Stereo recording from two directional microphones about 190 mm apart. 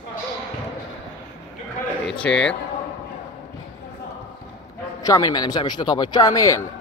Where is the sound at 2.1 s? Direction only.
5° left (ahead or behind).